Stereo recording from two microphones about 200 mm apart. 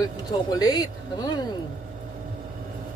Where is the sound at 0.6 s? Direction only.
20° left (ahead or behind).